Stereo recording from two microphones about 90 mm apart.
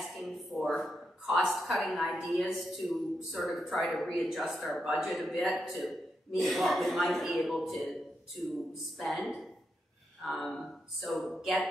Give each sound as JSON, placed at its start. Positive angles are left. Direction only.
{"t": 0.0, "sound": "speech", "side_deg": 0}